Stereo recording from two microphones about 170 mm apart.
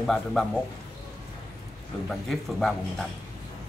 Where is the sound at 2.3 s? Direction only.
Centre (ahead or behind).